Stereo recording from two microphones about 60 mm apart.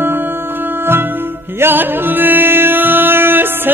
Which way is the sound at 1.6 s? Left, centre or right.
Right.